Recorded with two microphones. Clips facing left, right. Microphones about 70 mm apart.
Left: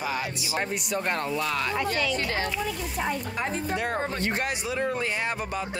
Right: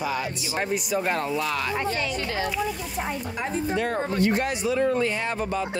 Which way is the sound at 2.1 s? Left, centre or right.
Left.